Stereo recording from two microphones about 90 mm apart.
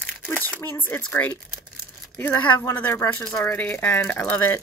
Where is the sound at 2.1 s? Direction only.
20° left (ahead or behind).